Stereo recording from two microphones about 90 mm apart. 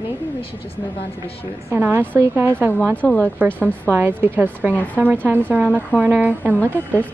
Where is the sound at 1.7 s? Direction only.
20° right (ahead or behind).